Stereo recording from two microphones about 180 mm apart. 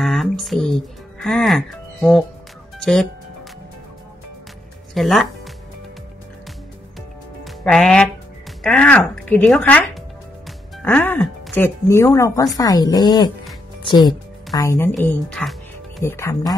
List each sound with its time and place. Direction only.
0.0 s speech: centre (ahead or behind)
4.9 s speech: centre (ahead or behind)
7.4 s a woman's voice: centre (ahead or behind)
15.0 s speech: 5° left (ahead or behind)